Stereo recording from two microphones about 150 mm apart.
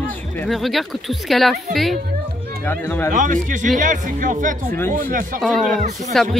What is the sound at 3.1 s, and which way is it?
Speech, 60° right (ahead or behind).